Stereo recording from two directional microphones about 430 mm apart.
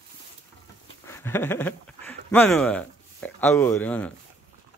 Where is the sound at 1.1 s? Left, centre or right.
Centre.